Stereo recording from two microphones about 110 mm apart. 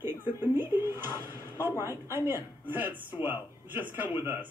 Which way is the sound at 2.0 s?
20° right (ahead or behind).